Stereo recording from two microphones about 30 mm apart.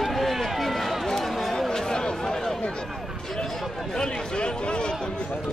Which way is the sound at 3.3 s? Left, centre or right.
Centre.